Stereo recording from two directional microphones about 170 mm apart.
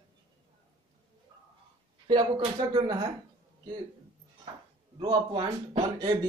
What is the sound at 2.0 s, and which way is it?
Speech, 25° right (ahead or behind).